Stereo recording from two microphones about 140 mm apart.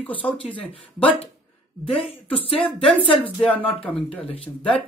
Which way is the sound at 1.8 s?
40° left (ahead or behind).